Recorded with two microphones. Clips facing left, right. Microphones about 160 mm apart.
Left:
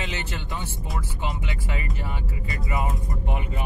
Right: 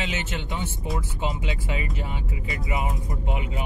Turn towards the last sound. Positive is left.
turn(degrees=-15)  # may be behind; listen again after turning